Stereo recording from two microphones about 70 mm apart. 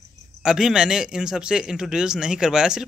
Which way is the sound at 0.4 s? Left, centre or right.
Centre.